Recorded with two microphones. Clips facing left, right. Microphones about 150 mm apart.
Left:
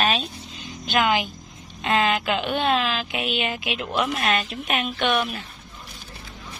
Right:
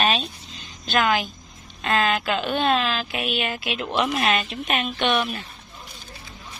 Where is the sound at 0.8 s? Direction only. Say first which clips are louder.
Even; 15° left (ahead or behind).